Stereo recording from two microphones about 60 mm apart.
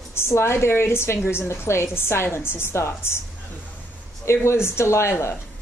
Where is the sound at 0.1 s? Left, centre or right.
Left.